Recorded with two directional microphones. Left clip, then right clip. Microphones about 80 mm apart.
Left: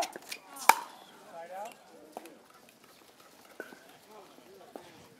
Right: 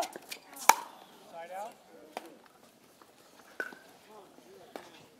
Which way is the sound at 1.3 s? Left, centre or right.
Centre.